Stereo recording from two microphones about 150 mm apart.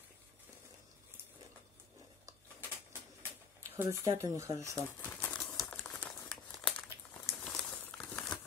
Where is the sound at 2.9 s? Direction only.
15° right (ahead or behind).